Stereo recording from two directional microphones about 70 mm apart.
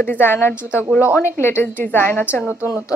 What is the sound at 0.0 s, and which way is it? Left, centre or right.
Speech, left.